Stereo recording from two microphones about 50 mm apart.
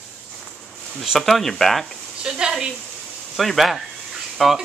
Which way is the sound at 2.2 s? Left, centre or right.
Centre.